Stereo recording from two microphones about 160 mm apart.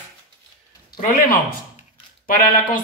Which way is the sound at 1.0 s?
60° left (ahead or behind).